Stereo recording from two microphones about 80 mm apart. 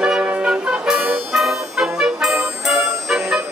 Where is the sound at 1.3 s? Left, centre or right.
Centre.